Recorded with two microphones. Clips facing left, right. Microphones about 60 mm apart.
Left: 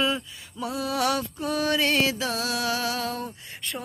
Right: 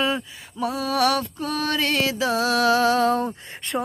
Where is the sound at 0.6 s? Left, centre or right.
Centre; by 2.1 s left.